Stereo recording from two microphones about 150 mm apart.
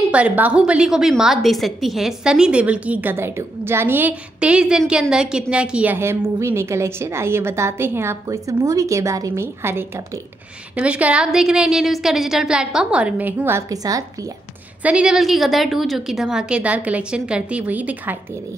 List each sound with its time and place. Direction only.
0.1 s a woman's voice: 10° right (ahead or behind)
14.8 s a woman's voice: 10° right (ahead or behind)